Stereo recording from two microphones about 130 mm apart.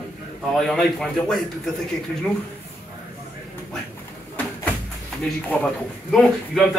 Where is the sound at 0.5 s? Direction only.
5° left (ahead or behind).